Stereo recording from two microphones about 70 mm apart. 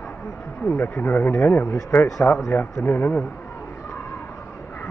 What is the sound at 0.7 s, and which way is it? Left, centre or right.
Speech, left.